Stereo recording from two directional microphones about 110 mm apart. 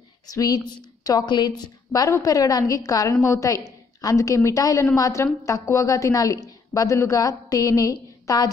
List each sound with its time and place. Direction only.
0.3 s a woman's voice: 35° left (ahead or behind)
1.9 s a woman's voice: 30° left (ahead or behind)